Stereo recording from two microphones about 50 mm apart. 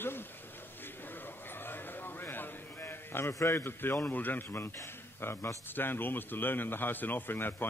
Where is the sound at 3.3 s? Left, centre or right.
Left.